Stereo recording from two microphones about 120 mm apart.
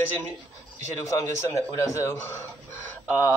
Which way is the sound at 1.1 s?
30° left (ahead or behind).